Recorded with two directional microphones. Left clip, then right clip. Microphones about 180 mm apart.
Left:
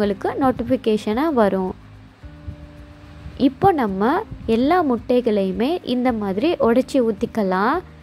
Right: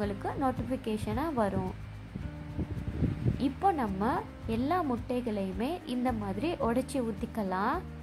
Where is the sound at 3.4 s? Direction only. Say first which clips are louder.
Left 12 dB; 25° left (ahead or behind).